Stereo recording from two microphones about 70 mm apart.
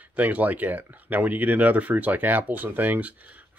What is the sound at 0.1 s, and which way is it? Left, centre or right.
Speech, right.